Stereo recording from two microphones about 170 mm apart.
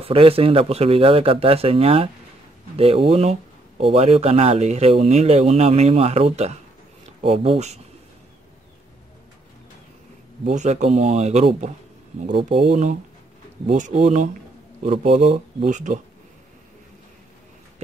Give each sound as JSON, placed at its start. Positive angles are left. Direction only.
{"t": 0.0, "sound": "speech", "side_deg": -35}
{"t": 10.4, "sound": "a man's voice", "side_deg": -45}